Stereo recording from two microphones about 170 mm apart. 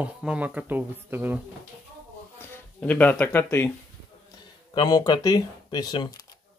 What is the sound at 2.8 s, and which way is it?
Speech, 10° left (ahead or behind).